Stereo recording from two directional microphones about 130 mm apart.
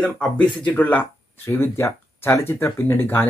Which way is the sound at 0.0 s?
10° left (ahead or behind).